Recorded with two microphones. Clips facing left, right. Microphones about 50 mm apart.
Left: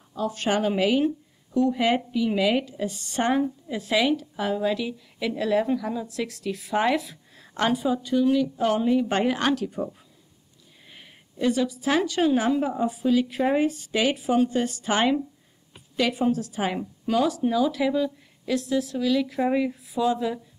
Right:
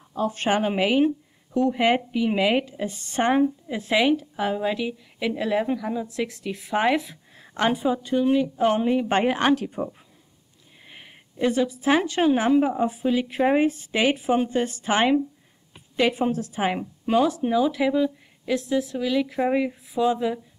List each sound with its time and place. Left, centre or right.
0.1 s a woman's voice: right
10.9 s a woman's voice: right